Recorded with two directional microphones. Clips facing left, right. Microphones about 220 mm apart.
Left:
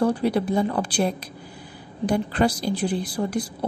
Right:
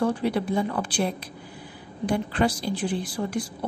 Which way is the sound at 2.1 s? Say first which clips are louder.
Left 2 dB; 40° left (ahead or behind).